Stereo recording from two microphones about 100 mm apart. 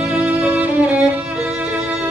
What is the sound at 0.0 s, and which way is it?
Music, 10° right (ahead or behind).